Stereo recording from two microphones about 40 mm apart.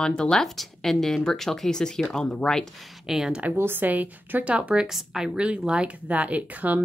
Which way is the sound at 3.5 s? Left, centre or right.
Right.